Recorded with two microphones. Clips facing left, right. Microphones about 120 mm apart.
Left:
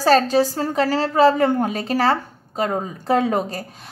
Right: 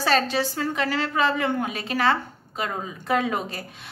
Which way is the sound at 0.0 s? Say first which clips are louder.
Left 7 dB; 40° left (ahead or behind).